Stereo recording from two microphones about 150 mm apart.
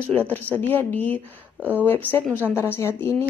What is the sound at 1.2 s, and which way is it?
Speech, 10° right (ahead or behind).